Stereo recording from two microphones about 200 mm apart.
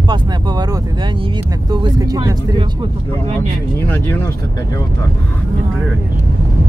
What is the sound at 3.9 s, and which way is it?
Speech, 15° left (ahead or behind).